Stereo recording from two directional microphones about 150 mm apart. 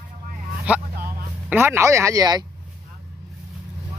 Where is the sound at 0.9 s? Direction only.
90° right.